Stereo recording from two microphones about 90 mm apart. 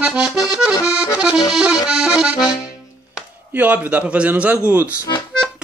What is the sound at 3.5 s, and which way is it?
A man's voice, 20° right (ahead or behind).